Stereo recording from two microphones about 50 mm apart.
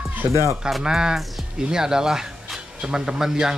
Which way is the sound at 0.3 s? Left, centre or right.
Right.